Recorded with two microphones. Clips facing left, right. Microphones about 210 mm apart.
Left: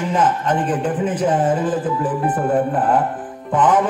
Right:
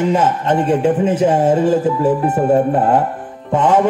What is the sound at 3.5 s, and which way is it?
Speech, 25° right (ahead or behind).